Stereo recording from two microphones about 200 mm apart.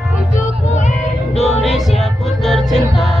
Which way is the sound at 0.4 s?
35° left (ahead or behind).